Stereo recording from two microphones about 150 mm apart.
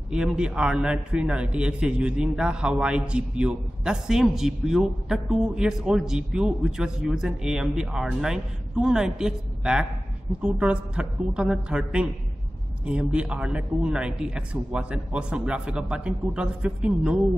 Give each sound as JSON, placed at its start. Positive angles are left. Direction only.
{"t": 0.1, "sound": "a man's voice", "side_deg": -5}